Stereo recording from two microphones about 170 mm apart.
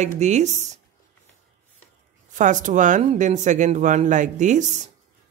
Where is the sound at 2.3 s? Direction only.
50° right (ahead or behind).